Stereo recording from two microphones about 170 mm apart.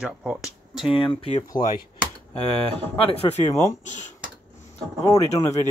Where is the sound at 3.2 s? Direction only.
40° left (ahead or behind).